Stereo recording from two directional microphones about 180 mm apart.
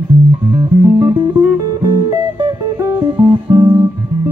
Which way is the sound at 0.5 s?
20° right (ahead or behind).